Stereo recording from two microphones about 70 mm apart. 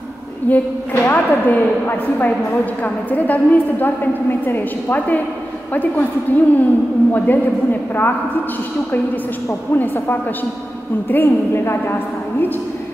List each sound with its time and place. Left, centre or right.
0.5 s a woman's voice: left
9.8 s a woman's voice: left